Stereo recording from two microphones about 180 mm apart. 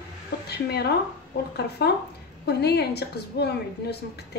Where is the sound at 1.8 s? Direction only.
65° left (ahead or behind).